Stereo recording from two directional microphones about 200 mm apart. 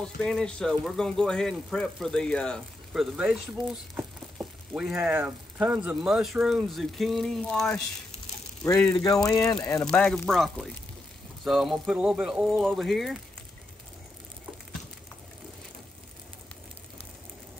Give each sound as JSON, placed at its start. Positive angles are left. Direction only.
{"t": 0.0, "sound": "a man's voice", "side_deg": 5}
{"t": 8.6, "sound": "speech", "side_deg": 15}
{"t": 9.8, "sound": "a man's voice", "side_deg": 5}